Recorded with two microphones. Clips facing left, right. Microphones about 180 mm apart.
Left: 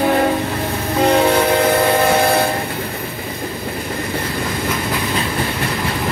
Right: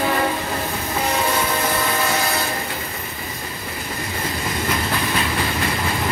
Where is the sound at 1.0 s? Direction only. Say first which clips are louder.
Left 9 dB; 60° left (ahead or behind).